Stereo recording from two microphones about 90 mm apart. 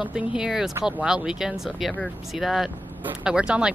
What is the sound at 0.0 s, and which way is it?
Speech, 10° right (ahead or behind).